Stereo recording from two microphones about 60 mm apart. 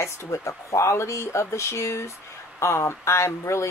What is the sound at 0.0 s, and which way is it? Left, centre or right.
Speech, left.